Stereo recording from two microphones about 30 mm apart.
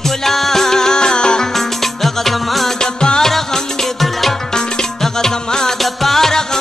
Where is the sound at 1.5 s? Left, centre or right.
Centre.